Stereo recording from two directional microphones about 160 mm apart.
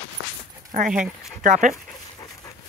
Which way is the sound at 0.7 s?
55° right (ahead or behind).